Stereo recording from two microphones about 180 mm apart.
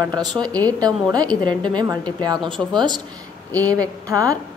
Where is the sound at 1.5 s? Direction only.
5° left (ahead or behind).